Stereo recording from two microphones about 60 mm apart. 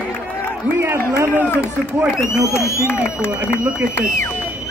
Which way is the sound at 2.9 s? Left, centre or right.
Left.